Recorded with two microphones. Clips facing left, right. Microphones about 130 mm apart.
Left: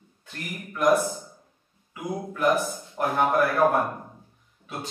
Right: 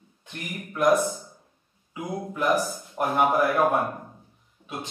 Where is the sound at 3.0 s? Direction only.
20° right (ahead or behind).